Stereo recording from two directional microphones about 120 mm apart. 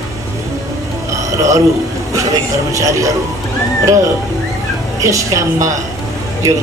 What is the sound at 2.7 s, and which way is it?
Speech, 25° right (ahead or behind).